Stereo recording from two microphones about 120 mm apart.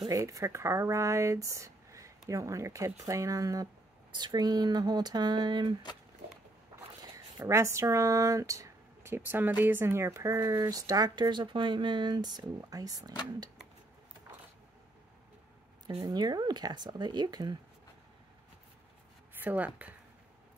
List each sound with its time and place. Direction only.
0.1 s speech: 25° right (ahead or behind)
7.2 s speech: 25° right (ahead or behind)
16.1 s speech: 35° right (ahead or behind)
19.3 s a woman's voice: 15° right (ahead or behind)